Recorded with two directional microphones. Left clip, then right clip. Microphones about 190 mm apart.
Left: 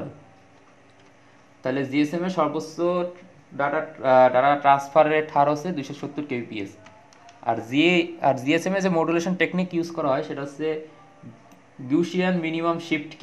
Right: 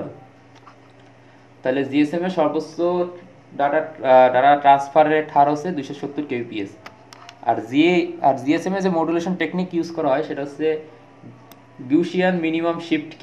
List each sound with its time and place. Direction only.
1.6 s speech: 25° left (ahead or behind)
11.9 s speech: 20° left (ahead or behind)